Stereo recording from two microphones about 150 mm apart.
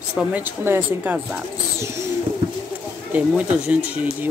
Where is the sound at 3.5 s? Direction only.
5° right (ahead or behind).